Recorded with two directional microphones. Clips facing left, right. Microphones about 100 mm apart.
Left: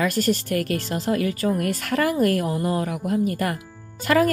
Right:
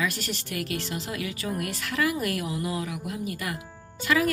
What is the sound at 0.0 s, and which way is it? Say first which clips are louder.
Speech: left 9 dB; 45° left (ahead or behind).